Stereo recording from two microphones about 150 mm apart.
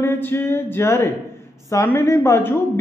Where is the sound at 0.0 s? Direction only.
15° left (ahead or behind).